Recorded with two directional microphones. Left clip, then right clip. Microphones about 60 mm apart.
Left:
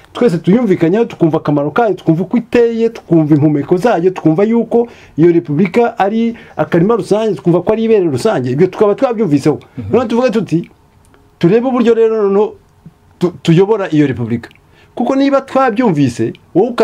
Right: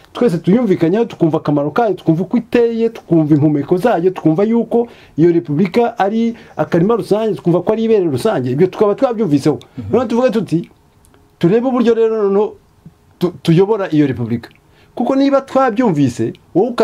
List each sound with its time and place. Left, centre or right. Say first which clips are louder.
0.1 s speech: left 2 dB; centre